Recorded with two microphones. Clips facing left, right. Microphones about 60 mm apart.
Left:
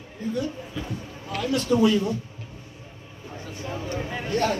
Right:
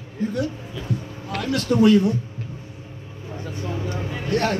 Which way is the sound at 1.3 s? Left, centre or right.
Right.